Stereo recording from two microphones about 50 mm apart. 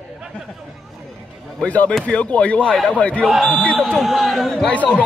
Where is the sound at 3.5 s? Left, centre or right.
Left.